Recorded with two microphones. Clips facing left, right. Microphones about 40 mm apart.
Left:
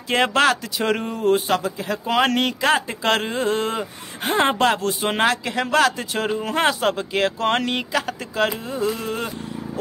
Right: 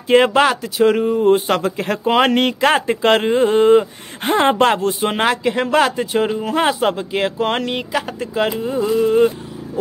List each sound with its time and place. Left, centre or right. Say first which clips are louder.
0.1 s speech: right 5 dB; centre
1.5 s speech: right 4 dB; right
2.0 s speech: right 5 dB; right
4.2 s speech: right 4 dB; right
5.9 s speech: right 7 dB; centre
6.3 s speech: right 3 dB; centre